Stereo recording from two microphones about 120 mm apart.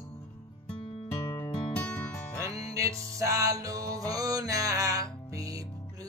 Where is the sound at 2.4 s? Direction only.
30° right (ahead or behind).